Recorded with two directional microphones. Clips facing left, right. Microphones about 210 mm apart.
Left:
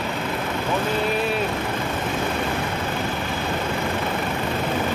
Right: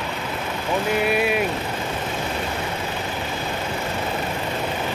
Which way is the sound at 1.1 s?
10° right (ahead or behind).